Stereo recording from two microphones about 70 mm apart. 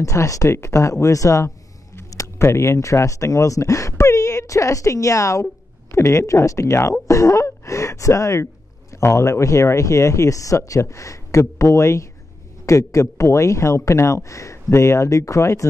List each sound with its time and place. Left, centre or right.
0.0 s speech: left